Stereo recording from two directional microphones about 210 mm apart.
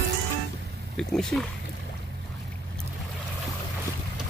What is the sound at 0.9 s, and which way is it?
Speech, 5° left (ahead or behind).